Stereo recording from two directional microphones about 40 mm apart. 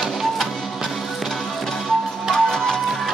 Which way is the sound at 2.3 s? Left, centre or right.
Centre.